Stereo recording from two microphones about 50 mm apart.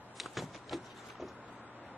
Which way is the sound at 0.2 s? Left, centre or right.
Centre.